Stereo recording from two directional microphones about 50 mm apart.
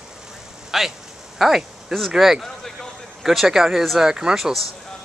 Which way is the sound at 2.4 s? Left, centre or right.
Centre.